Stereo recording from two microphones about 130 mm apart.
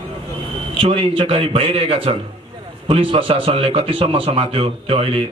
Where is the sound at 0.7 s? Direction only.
45° right (ahead or behind).